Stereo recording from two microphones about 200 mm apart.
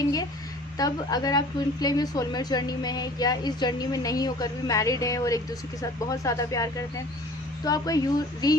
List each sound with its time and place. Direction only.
0.7 s a woman's voice: 20° left (ahead or behind)